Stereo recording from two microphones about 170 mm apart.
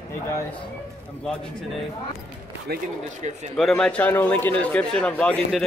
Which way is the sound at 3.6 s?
Centre (ahead or behind).